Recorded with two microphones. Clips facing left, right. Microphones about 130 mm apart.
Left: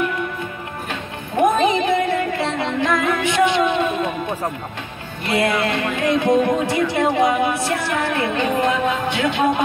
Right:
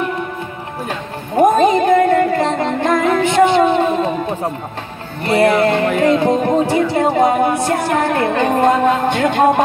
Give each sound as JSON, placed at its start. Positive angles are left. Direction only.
{"t": 1.3, "sound": "music", "side_deg": -40}
{"t": 5.2, "sound": "music", "side_deg": -45}